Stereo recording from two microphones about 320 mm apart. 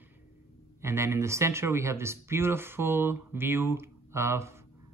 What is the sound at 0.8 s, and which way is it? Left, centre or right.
Speech, centre.